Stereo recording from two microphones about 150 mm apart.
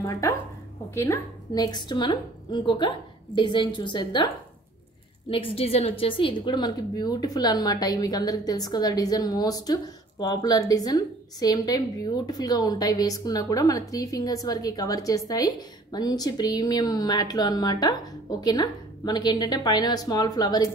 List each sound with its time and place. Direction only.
0.9 s a woman's voice: 20° left (ahead or behind)
5.3 s a woman's voice: 40° left (ahead or behind)